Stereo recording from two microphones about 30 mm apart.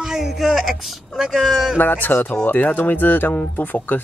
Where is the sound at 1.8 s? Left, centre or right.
Left.